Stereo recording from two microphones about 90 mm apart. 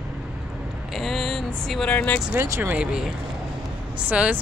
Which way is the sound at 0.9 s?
Centre (ahead or behind).